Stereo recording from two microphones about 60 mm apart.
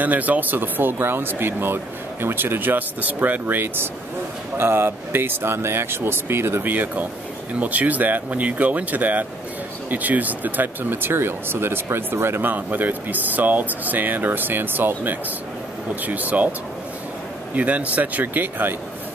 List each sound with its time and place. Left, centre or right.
0.0 s speech: right
17.6 s speech: right